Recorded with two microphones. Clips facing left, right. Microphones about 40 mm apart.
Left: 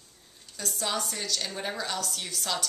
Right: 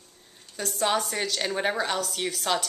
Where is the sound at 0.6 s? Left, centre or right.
Right.